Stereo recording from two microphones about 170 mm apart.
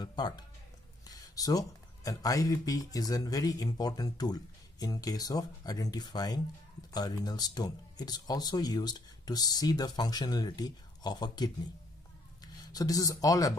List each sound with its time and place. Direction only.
0.0 s music: 25° left (ahead or behind)
1.0 s speech: 20° left (ahead or behind)
12.7 s speech: 20° left (ahead or behind)